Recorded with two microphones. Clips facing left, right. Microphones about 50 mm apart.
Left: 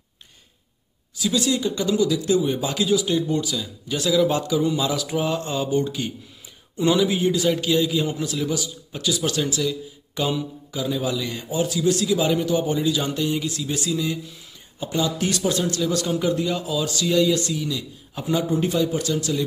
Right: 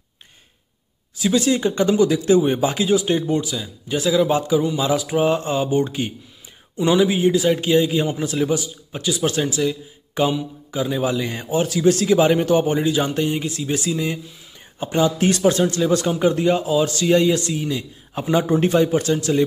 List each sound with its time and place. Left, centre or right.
1.1 s a man's voice: right
3.4 s a man's voice: centre
11.6 s a man's voice: right